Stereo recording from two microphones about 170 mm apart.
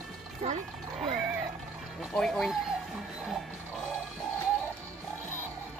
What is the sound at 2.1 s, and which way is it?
Speech, 5° left (ahead or behind).